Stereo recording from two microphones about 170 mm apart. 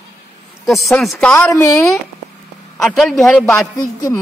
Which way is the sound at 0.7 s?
Centre (ahead or behind).